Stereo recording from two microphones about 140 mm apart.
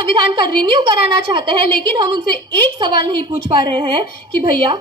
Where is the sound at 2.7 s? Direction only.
35° right (ahead or behind).